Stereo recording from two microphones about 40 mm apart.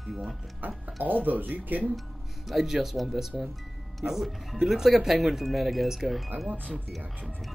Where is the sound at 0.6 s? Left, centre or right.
Right.